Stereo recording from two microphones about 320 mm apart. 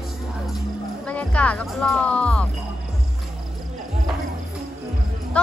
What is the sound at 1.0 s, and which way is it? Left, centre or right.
Speech, centre.